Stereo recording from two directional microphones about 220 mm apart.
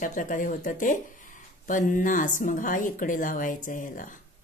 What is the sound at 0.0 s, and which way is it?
Speech, 35° left (ahead or behind).